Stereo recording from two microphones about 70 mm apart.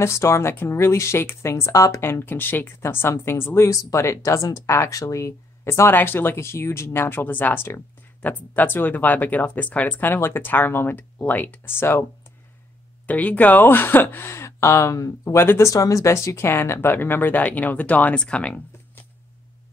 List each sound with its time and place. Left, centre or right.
0.0 s speech: left
2.0 s speech: left
13.0 s speech: left
15.3 s speech: left
15.7 s speech: left; by 18.6 s centre